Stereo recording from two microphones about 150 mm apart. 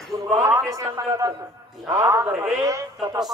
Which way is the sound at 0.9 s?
20° right (ahead or behind).